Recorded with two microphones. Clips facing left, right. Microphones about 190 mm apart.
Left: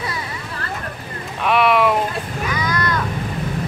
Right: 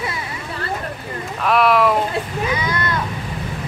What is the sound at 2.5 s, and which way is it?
Vehicle, 25° right (ahead or behind).